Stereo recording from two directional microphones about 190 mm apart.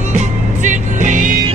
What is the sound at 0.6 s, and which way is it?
Music, 40° right (ahead or behind).